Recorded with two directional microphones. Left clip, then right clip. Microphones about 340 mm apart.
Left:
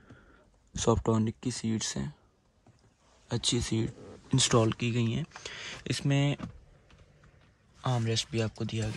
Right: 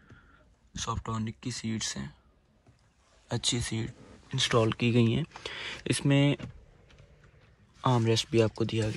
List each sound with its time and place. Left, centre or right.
0.7 s speech: left
3.3 s speech: centre
7.8 s speech: centre